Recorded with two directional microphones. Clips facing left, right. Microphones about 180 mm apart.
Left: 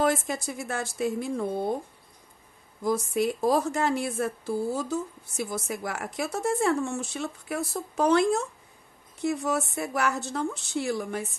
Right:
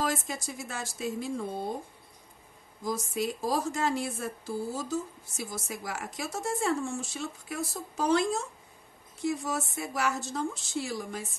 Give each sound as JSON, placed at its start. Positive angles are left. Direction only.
{"t": 0.0, "sound": "a woman's voice", "side_deg": 55}
{"t": 2.8, "sound": "a woman's voice", "side_deg": 60}